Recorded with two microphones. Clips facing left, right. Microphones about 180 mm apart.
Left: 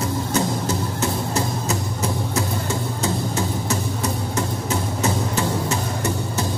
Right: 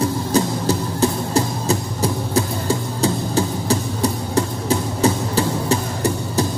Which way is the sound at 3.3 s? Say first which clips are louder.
Right 4 dB; 35° right (ahead or behind).